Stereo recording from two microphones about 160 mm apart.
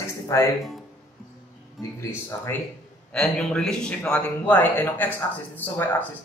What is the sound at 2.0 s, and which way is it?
Speech, 15° left (ahead or behind).